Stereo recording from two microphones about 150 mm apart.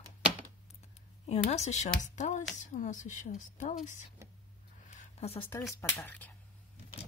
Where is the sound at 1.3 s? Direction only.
50° left (ahead or behind).